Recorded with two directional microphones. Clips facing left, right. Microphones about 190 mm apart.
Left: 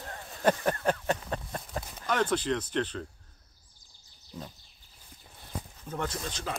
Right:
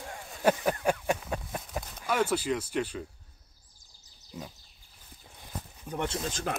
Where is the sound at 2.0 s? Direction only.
10° right (ahead or behind).